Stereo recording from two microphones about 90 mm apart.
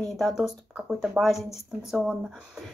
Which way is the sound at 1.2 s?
15° right (ahead or behind).